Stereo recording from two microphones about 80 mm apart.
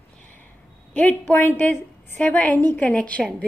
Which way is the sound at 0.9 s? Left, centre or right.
Centre.